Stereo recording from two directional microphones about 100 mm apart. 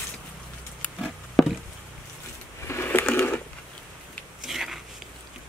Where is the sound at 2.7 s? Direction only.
20° left (ahead or behind).